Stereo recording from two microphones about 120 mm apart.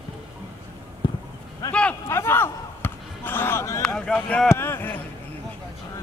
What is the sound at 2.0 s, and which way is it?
Basketball bounce, 20° left (ahead or behind).